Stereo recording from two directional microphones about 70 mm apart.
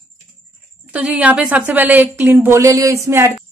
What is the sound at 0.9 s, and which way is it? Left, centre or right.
Speech, centre.